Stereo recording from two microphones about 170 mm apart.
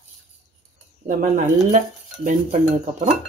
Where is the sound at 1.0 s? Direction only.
50° right (ahead or behind).